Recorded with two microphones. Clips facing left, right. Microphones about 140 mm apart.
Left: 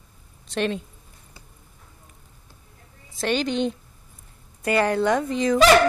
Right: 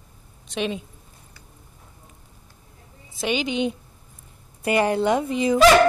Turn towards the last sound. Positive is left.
turn(degrees=-10)  # may be behind; listen again after turning